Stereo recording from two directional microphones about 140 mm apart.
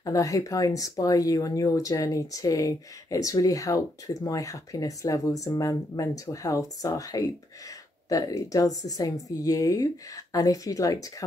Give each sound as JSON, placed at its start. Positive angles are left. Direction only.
{"t": 0.0, "sound": "speech", "side_deg": 25}